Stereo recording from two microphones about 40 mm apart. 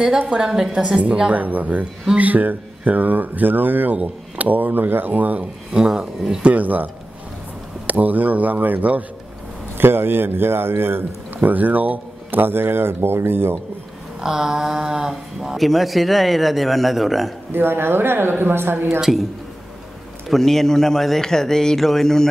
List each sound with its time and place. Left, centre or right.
0.3 s a woman's voice: centre
1.3 s speech: right
5.7 s a woman's voice: centre
6.4 s speech: right
9.8 s a man's voice: right
11.4 s speech: right
12.4 s a man's voice: right
14.2 s speech: centre
15.5 s speech: centre
17.5 s a man's voice: right
18.9 s speech: centre
20.2 s a man's voice: centre